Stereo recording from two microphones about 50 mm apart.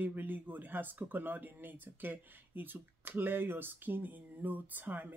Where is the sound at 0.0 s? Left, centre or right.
Right.